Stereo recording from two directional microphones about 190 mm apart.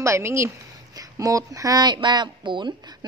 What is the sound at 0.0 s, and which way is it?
A woman's voice, 15° right (ahead or behind).